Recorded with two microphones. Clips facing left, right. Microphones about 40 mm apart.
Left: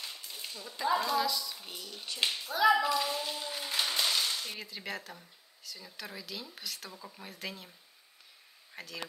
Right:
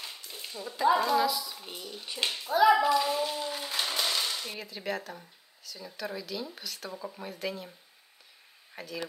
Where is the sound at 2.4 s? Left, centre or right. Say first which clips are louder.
Right 4 dB; centre.